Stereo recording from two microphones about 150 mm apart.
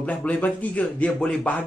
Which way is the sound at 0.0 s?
10° left (ahead or behind).